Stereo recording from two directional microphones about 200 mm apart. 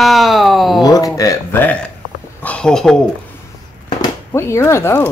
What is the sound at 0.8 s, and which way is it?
Speech, 15° left (ahead or behind).